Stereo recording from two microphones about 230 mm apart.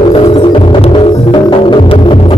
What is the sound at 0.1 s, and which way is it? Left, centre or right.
Music, left.